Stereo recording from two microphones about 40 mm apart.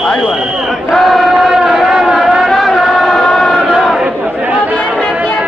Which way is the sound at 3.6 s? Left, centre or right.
Centre.